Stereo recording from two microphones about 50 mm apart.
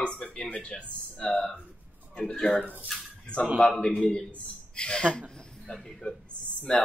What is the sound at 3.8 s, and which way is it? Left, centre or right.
Speech, centre.